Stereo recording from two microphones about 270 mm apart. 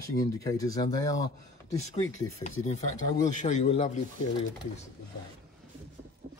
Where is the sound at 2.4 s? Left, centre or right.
Left.